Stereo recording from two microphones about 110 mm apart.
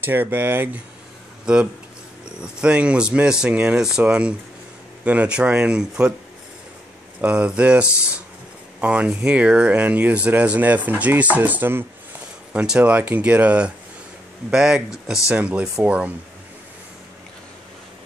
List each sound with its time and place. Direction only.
0.0 s speech: 20° right (ahead or behind)
1.4 s speech: 10° right (ahead or behind)
7.2 s speech: 10° right (ahead or behind)